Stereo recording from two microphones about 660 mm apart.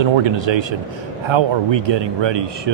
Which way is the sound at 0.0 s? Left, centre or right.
Right.